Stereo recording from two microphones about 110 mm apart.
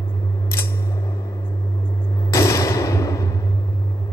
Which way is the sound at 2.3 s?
30° left (ahead or behind).